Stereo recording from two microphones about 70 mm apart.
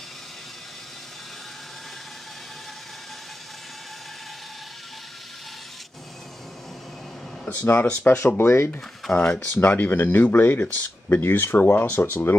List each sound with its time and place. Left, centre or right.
7.4 s speech: left
8.4 s speech: left
9.1 s speech: centre
9.5 s speech: left